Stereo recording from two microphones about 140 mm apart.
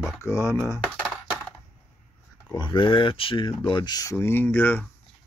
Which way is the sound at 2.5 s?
35° left (ahead or behind).